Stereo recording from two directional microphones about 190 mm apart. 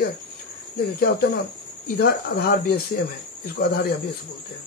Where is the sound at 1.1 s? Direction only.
60° left (ahead or behind).